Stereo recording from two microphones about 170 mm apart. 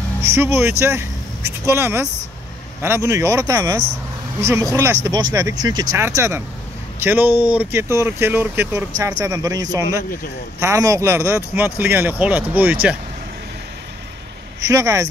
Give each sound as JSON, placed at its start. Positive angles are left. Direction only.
{"t": 0.3, "sound": "speech", "side_deg": -15}
{"t": 14.7, "sound": "speech", "side_deg": -20}